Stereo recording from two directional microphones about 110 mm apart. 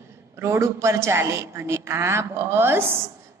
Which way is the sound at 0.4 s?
25° right (ahead or behind).